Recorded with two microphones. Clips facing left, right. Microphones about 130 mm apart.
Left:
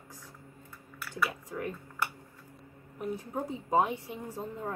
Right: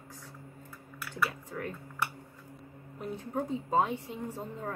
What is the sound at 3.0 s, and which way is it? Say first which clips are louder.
Speech: even; 10° left (ahead or behind).